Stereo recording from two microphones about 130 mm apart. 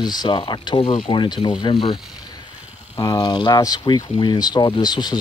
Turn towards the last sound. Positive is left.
turn(degrees=35)  # may be behind; listen again after turning